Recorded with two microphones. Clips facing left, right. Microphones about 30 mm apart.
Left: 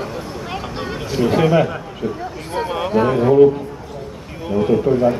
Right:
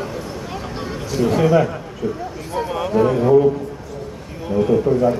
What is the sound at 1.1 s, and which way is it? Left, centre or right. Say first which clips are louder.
Speech: even; left.